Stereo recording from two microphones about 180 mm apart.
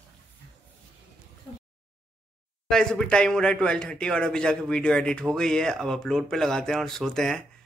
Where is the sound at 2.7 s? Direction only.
5° left (ahead or behind).